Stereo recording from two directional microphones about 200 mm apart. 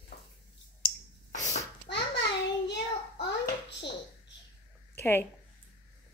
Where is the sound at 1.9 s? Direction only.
60° left (ahead or behind).